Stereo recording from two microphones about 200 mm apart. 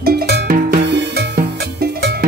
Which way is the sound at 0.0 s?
50° right (ahead or behind).